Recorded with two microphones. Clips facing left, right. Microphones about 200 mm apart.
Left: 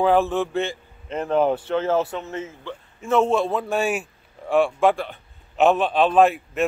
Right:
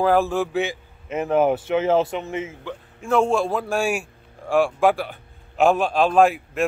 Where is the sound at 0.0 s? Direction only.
Centre (ahead or behind).